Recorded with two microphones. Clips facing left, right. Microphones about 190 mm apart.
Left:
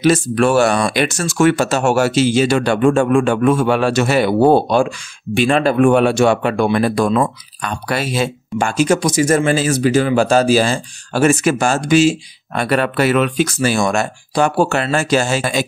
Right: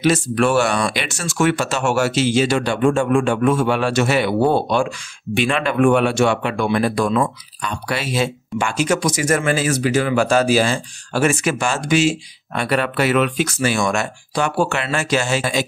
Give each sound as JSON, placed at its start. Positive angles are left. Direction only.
{"t": 0.0, "sound": "speech", "side_deg": 40}